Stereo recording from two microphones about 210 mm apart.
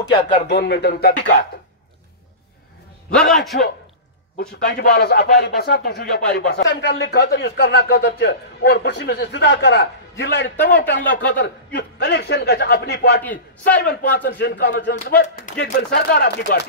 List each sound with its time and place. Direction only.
0.0 s speech: 20° left (ahead or behind)
0.6 s speech: 50° left (ahead or behind)
3.1 s a man's voice: 5° left (ahead or behind)
4.4 s speech: 50° left (ahead or behind)
10.5 s a man's voice: 10° left (ahead or behind)
10.8 s speech: 45° left (ahead or behind)
13.2 s a man's voice: 10° left (ahead or behind)
14.2 s speech: 50° left (ahead or behind)
15.0 s speech: 40° left (ahead or behind)